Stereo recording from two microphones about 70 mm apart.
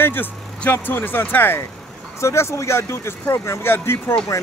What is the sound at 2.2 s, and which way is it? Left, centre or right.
Speech, left.